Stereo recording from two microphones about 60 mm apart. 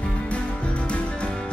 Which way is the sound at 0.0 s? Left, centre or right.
Centre.